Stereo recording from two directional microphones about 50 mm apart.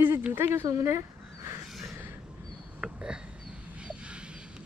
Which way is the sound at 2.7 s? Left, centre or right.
Centre.